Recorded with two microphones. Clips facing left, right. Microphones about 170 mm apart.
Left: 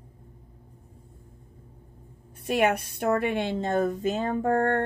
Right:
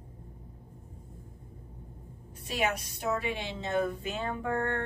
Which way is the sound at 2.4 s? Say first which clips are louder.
Left 8 dB; 55° left (ahead or behind).